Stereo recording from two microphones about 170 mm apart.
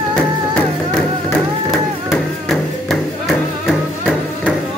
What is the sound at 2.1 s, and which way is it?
Music, centre (ahead or behind).